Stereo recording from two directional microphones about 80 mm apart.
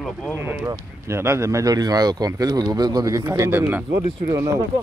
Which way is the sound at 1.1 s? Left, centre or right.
Right.